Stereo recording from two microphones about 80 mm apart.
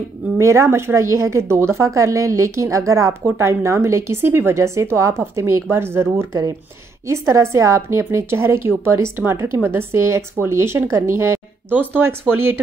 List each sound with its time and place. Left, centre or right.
0.4 s speech: right